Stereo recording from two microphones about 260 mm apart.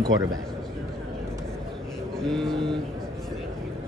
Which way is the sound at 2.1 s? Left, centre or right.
Centre.